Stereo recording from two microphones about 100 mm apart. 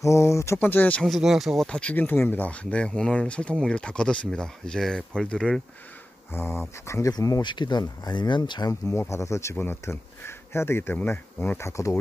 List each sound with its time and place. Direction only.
0.0 s speech: 30° left (ahead or behind)
0.6 s speech: 20° left (ahead or behind)
1.0 s speech: centre (ahead or behind)
1.7 s speech: 15° left (ahead or behind)
6.3 s speech: 25° left (ahead or behind)
7.4 s speech: 50° left (ahead or behind)
8.8 s speech: 25° left (ahead or behind)